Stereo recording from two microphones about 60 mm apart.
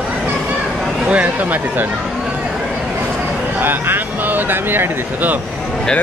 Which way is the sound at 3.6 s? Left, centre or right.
Right.